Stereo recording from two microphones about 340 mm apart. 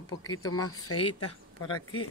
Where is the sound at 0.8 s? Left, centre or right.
Left.